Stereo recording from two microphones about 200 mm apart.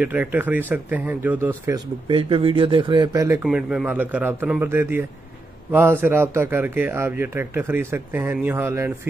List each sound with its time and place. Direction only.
0.0 s a man's voice: 10° right (ahead or behind)
2.0 s speech: 25° right (ahead or behind)
3.4 s a man's voice: 5° right (ahead or behind)